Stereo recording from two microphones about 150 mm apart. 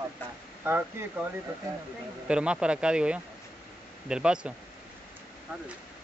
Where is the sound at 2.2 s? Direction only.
5° right (ahead or behind).